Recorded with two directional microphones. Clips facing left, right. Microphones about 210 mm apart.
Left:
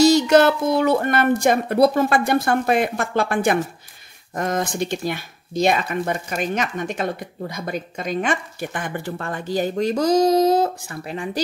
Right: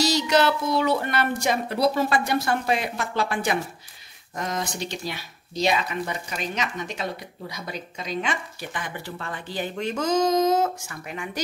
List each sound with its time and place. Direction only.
0.0 s speech: 50° left (ahead or behind); by 11.4 s 30° left (ahead or behind)